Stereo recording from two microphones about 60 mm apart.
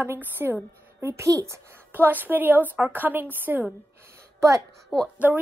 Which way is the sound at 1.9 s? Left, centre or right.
Right.